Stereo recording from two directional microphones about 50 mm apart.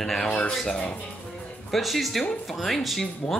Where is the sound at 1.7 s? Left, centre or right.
Centre.